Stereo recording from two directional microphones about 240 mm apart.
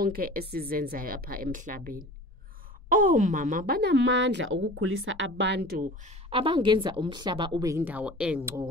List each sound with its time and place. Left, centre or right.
0.0 s a woman's voice: right
6.0 s a woman's voice: right